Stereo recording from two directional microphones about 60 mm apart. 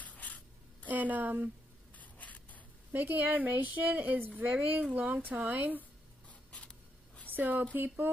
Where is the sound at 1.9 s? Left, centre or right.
Left.